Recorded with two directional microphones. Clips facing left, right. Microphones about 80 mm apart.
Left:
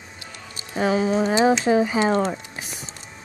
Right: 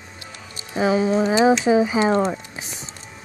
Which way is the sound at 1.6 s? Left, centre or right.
Centre.